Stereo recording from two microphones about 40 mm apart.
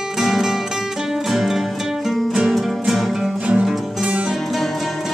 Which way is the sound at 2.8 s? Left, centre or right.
Centre.